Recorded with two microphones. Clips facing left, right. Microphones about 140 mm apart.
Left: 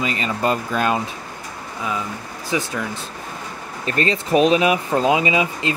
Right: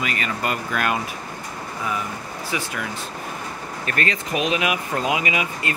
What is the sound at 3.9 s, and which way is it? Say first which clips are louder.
Speech: left 6 dB; 30° left (ahead or behind).